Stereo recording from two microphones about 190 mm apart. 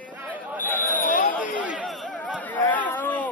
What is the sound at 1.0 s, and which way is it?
Chatter, 45° left (ahead or behind).